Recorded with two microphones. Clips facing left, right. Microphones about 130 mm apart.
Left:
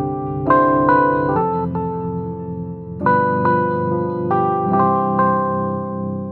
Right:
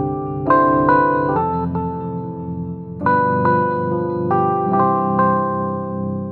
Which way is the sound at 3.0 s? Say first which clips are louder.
Even; 5° left (ahead or behind).